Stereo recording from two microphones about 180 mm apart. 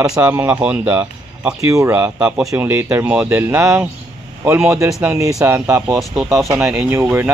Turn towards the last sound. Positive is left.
turn(degrees=-10)  # may be behind; listen again after turning